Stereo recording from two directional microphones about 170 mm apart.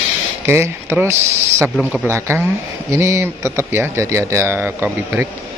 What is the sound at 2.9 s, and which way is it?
Speech, 15° right (ahead or behind).